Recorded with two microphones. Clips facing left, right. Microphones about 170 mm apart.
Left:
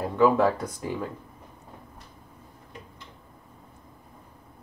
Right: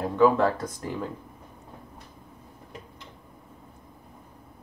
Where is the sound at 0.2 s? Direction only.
10° left (ahead or behind).